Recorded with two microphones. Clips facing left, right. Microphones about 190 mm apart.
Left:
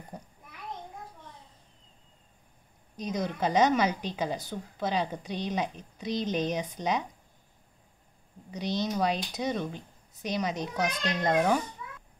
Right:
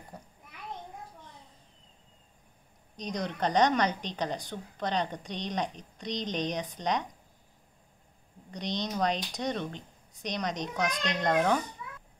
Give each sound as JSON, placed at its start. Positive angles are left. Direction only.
{"t": 0.1, "sound": "a child's voice", "side_deg": 20}
{"t": 3.0, "sound": "a woman's voice", "side_deg": 5}
{"t": 8.5, "sound": "a woman's voice", "side_deg": 5}